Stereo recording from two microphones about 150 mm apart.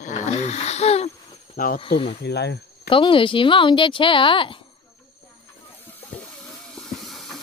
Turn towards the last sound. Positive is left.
turn(degrees=0)  # may be behind; listen again after turning